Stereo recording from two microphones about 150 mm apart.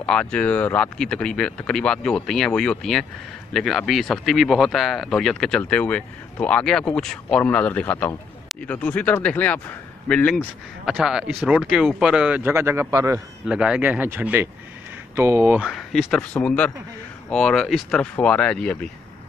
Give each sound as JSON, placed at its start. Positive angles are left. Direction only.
{"t": 0.0, "sound": "a man's voice", "side_deg": 5}
{"t": 13.5, "sound": "speech", "side_deg": -5}
{"t": 15.7, "sound": "a man's voice", "side_deg": 0}